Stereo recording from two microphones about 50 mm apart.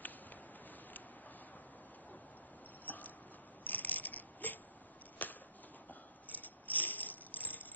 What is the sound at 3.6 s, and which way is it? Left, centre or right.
Mechanisms, left.